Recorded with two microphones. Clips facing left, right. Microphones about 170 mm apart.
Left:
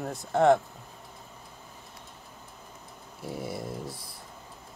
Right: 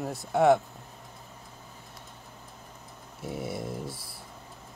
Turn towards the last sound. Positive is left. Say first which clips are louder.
# right 1 dB
turn(degrees=0)  # may be behind; listen again after turning